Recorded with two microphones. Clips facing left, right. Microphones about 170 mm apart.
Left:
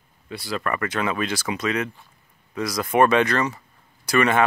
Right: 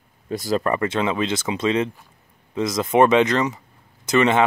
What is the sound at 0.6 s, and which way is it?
Speech, 30° right (ahead or behind).